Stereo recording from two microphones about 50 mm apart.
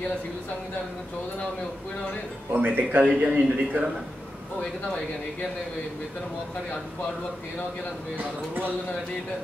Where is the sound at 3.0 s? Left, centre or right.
Centre.